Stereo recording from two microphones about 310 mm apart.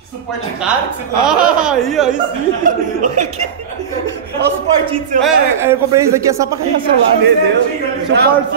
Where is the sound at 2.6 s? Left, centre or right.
Right.